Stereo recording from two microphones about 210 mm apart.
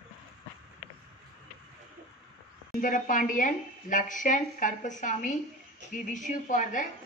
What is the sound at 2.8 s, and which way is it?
Speech, 40° left (ahead or behind).